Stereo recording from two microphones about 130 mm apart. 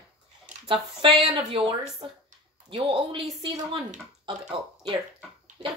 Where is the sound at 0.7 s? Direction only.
40° right (ahead or behind).